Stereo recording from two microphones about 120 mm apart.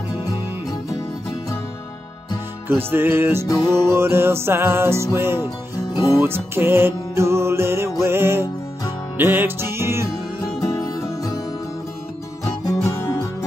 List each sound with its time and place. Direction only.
0.2 s music: 30° left (ahead or behind)
2.7 s music: 20° right (ahead or behind)
3.4 s music: 30° left (ahead or behind)
3.8 s music: 20° right (ahead or behind)
10.6 s music: 30° left (ahead or behind)
12.8 s music: 25° left (ahead or behind)